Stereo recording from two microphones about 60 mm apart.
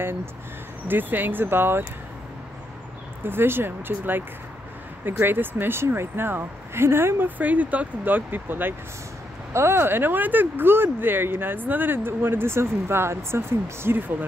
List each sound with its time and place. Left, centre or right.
0.8 s speech: right
3.3 s speech: right
9.5 s speech: right
13.8 s speech: right